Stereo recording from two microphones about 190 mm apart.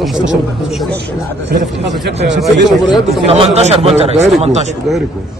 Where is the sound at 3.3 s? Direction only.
30° right (ahead or behind).